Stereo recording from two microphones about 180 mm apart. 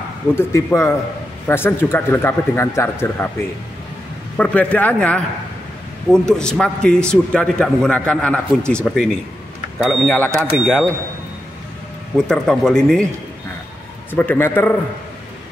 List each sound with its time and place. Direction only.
0.4 s speech: 15° left (ahead or behind)
4.4 s a man's voice: 10° left (ahead or behind)
12.3 s a man's voice: 5° left (ahead or behind)
14.1 s speech: 10° left (ahead or behind)